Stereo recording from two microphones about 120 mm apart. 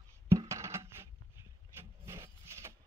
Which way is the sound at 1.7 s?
20° right (ahead or behind).